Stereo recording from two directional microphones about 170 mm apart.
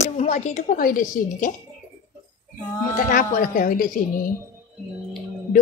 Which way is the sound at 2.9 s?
55° left (ahead or behind).